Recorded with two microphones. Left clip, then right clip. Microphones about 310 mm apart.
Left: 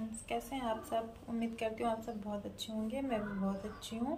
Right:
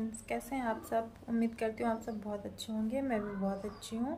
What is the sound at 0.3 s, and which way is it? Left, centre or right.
A woman's voice, centre.